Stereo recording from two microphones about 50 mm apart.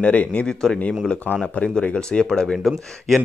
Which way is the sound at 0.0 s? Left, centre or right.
Left.